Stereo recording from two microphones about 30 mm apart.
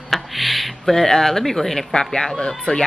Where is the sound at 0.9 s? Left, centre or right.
Centre.